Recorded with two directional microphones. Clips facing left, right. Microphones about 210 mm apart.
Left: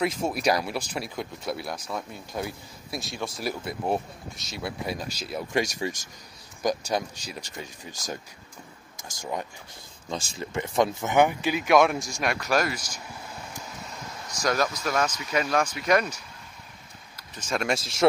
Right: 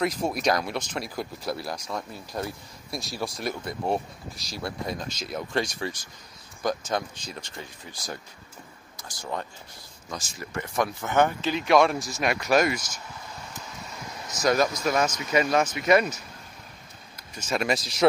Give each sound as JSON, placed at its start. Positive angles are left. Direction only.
{"t": 0.0, "sound": "speech", "side_deg": 5}
{"t": 9.2, "sound": "speech", "side_deg": 10}
{"t": 10.0, "sound": "speech", "side_deg": 25}
{"t": 14.4, "sound": "speech", "side_deg": -5}
{"t": 17.4, "sound": "speech", "side_deg": -5}